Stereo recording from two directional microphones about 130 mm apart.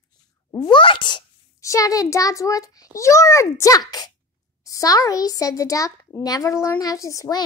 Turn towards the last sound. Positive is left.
turn(degrees=25)  # may be behind; listen again after turning